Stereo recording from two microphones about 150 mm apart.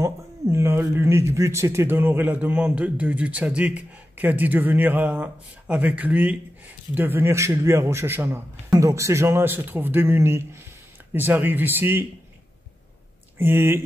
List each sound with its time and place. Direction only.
0.0 s speech: 15° right (ahead or behind)
13.4 s speech: 15° right (ahead or behind)